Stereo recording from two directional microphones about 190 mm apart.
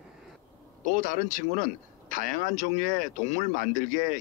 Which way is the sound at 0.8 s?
45° right (ahead or behind).